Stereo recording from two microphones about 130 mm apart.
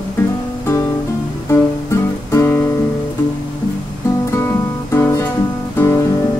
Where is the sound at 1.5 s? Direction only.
20° left (ahead or behind).